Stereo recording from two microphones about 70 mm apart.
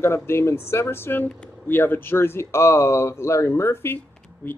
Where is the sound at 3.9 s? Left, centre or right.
Left.